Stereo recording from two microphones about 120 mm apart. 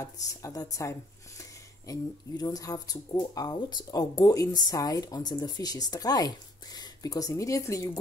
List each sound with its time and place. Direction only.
0.0 s a woman's voice: 25° left (ahead or behind)